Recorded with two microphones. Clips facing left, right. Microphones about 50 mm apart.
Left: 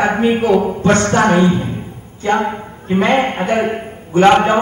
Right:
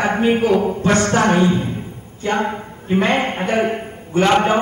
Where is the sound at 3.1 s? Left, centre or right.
Centre.